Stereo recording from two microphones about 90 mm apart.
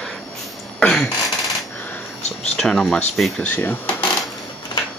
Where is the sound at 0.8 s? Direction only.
10° left (ahead or behind).